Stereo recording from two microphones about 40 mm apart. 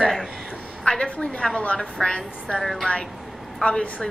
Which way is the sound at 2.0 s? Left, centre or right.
Left.